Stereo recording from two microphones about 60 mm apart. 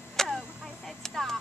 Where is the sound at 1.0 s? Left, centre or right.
Centre.